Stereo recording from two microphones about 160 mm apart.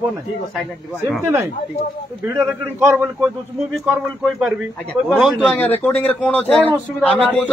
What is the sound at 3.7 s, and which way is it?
Speech, 5° right (ahead or behind).